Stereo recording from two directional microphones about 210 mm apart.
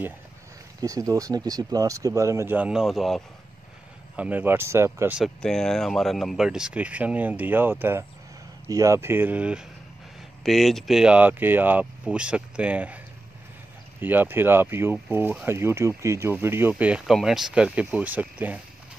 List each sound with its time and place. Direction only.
0.7 s speech: 15° right (ahead or behind)